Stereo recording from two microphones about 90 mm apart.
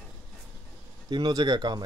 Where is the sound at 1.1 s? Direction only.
55° right (ahead or behind).